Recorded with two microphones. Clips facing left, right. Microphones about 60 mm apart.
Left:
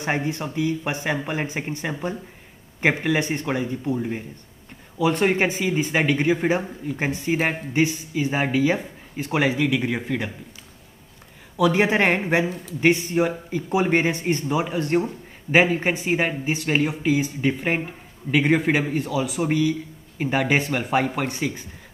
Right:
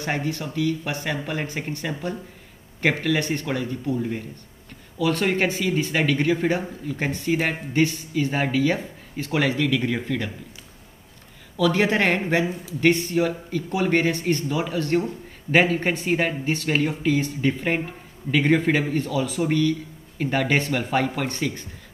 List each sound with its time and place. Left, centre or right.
0.0 s speech: left
11.5 s speech: centre